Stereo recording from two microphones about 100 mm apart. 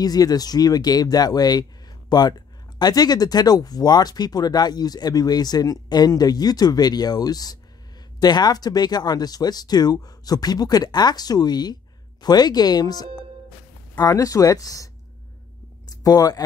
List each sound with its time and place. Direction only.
0.0 s speech: 40° left (ahead or behind)
16.0 s speech: 35° left (ahead or behind)